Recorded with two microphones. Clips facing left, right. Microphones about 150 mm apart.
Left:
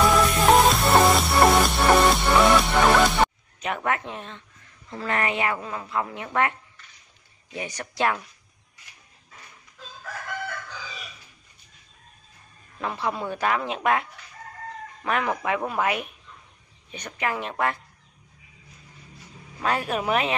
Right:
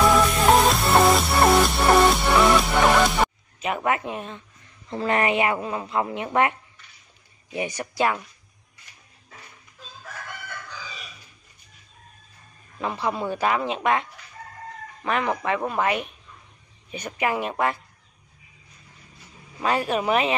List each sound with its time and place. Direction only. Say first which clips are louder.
0.0 s music: right 1 dB; centre (ahead or behind)
4.8 s a woman's voice: right 4 dB; 20° right (ahead or behind)
7.5 s a woman's voice: right 4 dB; 10° right (ahead or behind)
12.8 s speech: right 2 dB; centre (ahead or behind)
15.0 s speech: right 1 dB; centre (ahead or behind)
16.9 s a woman's voice: right 3 dB; 10° right (ahead or behind)
19.6 s speech: right 2 dB; centre (ahead or behind)